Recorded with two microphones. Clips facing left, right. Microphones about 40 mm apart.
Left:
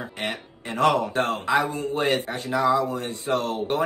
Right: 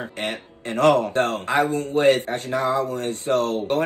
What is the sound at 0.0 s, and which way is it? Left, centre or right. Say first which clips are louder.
Speech: right 2 dB; right.